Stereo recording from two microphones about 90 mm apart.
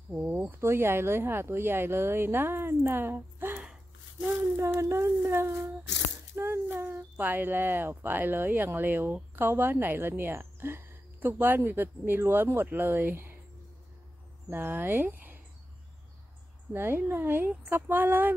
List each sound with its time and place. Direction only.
0.5 s speech: 25° right (ahead or behind)
14.5 s speech: 25° right (ahead or behind)
16.7 s speech: 25° right (ahead or behind)